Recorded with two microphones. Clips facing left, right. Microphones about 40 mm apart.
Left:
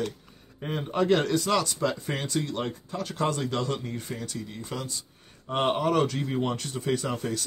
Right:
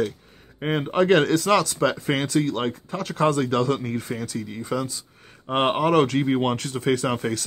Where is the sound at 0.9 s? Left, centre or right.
Right.